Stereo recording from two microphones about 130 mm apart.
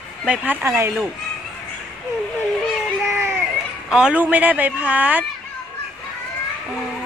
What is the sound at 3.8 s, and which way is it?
Speech, 5° right (ahead or behind).